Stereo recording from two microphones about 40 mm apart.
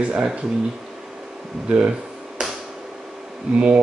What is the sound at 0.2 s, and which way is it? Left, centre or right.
Speech, right.